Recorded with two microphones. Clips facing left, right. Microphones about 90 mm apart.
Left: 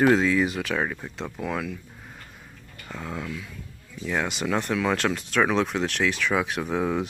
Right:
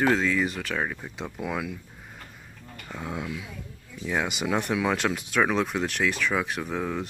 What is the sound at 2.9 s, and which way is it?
Speech, 10° right (ahead or behind).